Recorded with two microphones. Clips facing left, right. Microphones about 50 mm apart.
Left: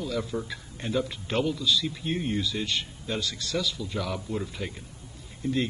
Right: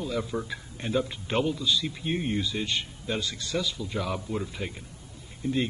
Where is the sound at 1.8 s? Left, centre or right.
Centre.